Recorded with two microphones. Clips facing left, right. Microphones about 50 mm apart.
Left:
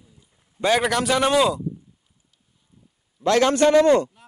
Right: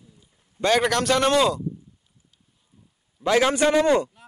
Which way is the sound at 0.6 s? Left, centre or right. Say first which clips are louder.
Even; centre.